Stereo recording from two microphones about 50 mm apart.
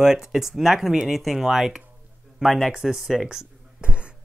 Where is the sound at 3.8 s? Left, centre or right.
Right.